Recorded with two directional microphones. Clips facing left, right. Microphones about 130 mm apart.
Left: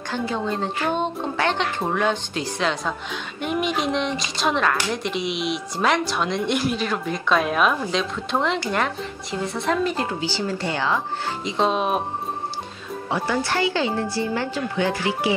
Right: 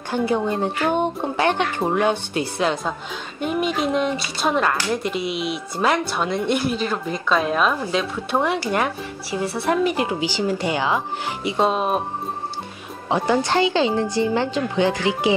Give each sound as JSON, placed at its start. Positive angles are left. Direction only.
{"t": 0.1, "sound": "a woman's voice", "side_deg": -10}
{"t": 7.8, "sound": "a woman's voice", "side_deg": -5}
{"t": 13.1, "sound": "speech", "side_deg": -20}